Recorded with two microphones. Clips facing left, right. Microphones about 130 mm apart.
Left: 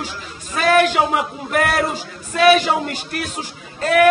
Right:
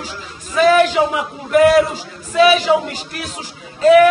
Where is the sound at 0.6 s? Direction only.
55° left (ahead or behind).